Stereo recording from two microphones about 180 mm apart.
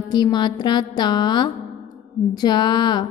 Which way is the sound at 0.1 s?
25° left (ahead or behind).